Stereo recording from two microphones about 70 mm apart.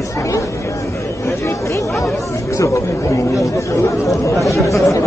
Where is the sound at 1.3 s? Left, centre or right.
Left.